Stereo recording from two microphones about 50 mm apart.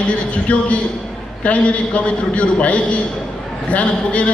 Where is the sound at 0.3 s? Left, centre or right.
Left.